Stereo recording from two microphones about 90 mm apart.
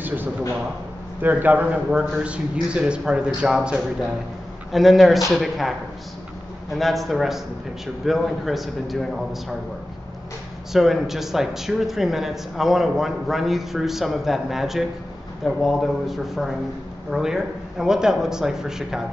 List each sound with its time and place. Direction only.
0.0 s a sound: 20° right (ahead or behind)
1.2 s a man's voice: 20° right (ahead or behind); by 9.6 s centre (ahead or behind)
10.7 s speech: 5° right (ahead or behind)